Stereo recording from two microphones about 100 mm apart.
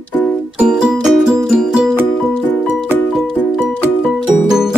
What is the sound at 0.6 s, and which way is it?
Music, 5° right (ahead or behind).